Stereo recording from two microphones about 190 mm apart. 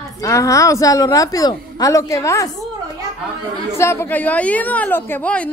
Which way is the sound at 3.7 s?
15° left (ahead or behind).